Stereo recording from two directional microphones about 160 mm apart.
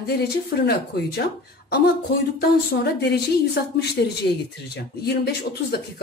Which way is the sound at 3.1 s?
90° left.